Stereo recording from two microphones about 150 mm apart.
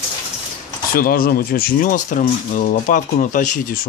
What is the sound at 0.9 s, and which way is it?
Speech, 75° left (ahead or behind).